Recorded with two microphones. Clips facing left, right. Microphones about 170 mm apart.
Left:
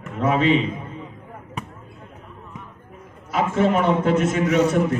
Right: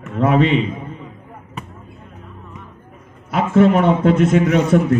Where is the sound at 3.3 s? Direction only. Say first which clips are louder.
Right 6 dB; 60° right (ahead or behind).